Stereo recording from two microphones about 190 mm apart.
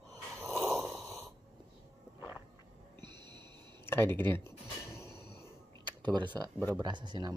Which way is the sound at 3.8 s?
10° left (ahead or behind).